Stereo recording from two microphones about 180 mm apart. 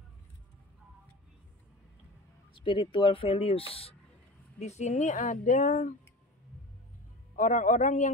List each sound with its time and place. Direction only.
2.5 s speech: 30° left (ahead or behind); by 5.9 s 45° left (ahead or behind)
7.3 s speech: 45° left (ahead or behind)